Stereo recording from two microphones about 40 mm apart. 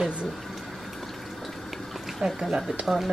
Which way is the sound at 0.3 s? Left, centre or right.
Centre.